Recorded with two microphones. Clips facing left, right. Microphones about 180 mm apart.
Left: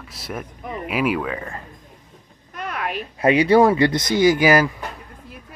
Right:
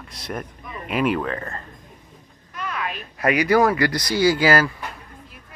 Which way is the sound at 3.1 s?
25° left (ahead or behind).